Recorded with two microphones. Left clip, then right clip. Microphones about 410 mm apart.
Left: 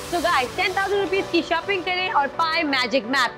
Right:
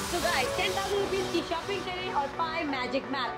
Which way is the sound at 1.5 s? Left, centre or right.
Left.